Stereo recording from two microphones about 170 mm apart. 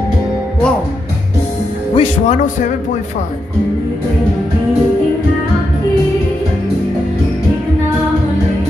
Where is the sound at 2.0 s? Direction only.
40° left (ahead or behind).